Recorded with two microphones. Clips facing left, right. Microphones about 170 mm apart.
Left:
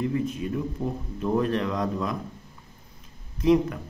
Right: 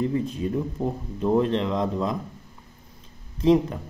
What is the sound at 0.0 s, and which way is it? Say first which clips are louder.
Speech: right 2 dB; 30° right (ahead or behind).